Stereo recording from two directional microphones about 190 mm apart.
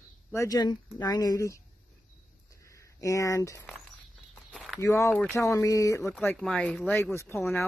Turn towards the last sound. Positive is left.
turn(degrees=15)  # may be behind; listen again after turning